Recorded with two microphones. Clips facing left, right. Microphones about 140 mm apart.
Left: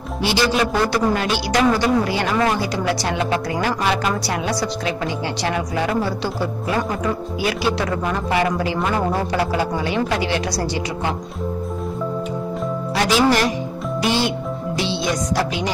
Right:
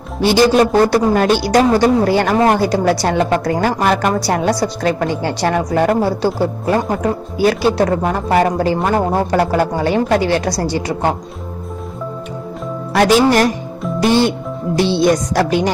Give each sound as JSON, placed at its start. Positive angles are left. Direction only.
{"t": 0.2, "sound": "a woman's voice", "side_deg": -45}
{"t": 12.9, "sound": "a woman's voice", "side_deg": -50}